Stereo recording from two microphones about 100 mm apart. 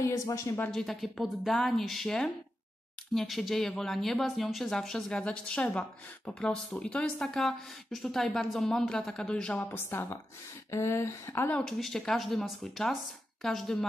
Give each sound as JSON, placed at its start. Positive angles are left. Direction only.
{"t": 0.0, "sound": "speech", "side_deg": 30}
{"t": 0.7, "sound": "speech", "side_deg": 0}
{"t": 9.6, "sound": "speech", "side_deg": 20}
{"t": 11.5, "sound": "speech", "side_deg": 5}